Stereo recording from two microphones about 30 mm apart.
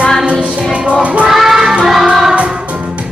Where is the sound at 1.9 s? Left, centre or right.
Centre.